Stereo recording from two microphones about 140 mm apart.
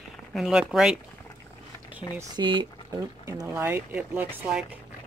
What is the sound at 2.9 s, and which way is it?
Speech, 25° right (ahead or behind).